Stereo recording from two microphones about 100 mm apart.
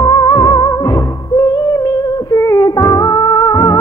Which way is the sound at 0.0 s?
40° left (ahead or behind).